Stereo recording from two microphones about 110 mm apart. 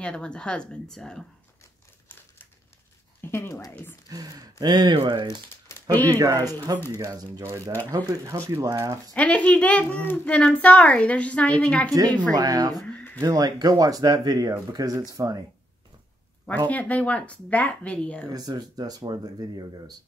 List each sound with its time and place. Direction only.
0.0 s a child's voice: 10° left (ahead or behind)
3.2 s speech: 20° left (ahead or behind)
4.1 s speech: 35° right (ahead or behind)
9.1 s a child's voice: 15° left (ahead or behind)
12.4 s speech: 35° right (ahead or behind)
12.8 s speech: 15° left (ahead or behind)
13.2 s speech: 35° right (ahead or behind)
16.6 s a child's voice: 15° left (ahead or behind)
18.3 s speech: 35° right (ahead or behind)